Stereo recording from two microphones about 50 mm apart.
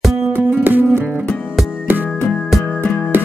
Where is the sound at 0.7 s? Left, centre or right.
Right.